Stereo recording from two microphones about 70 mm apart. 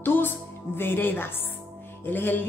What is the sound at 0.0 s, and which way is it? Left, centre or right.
Music, left.